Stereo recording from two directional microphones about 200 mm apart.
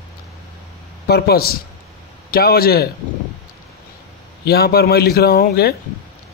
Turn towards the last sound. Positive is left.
turn(degrees=50)  # may be behind; listen again after turning